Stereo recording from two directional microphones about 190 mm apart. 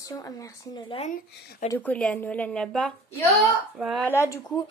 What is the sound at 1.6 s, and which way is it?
A woman's voice, 10° left (ahead or behind).